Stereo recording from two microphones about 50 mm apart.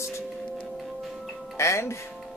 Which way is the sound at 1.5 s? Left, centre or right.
Left.